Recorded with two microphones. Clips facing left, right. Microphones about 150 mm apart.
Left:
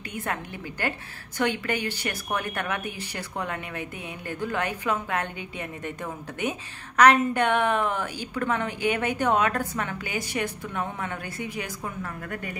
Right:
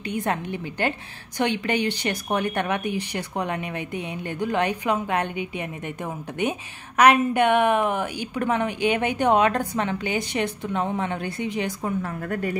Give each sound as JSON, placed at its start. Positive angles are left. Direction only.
{"t": 0.1, "sound": "a woman's voice", "side_deg": -20}
{"t": 7.0, "sound": "a woman's voice", "side_deg": -15}
{"t": 11.8, "sound": "a woman's voice", "side_deg": -40}